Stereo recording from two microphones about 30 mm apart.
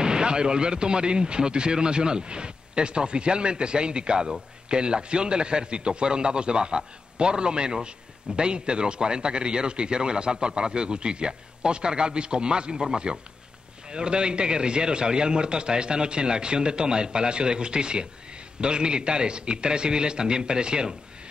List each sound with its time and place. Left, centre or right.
0.0 s a man's voice: right